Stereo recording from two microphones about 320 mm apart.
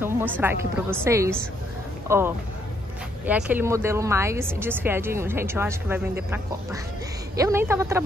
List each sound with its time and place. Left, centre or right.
0.0 s speech: centre